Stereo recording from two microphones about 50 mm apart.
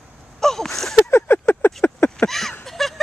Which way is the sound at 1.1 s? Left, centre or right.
Left.